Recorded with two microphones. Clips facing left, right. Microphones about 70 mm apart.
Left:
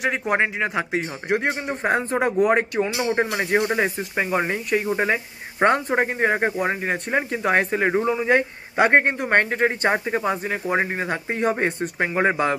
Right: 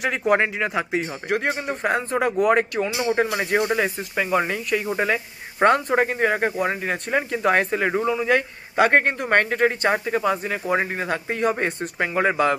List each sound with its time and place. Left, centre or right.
0.3 s a man's voice: left
3.3 s speech: centre
3.7 s a man's voice: centre
8.1 s a man's voice: left